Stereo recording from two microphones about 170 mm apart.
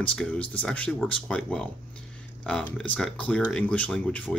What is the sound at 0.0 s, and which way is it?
Speech, 5° left (ahead or behind).